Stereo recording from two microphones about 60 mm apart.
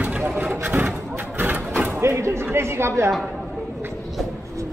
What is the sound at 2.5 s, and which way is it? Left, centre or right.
Chatter, right.